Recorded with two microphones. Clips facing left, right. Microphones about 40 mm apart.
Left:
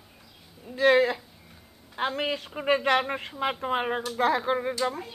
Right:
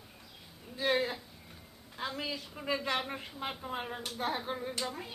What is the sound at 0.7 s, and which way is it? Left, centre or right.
Speech, left.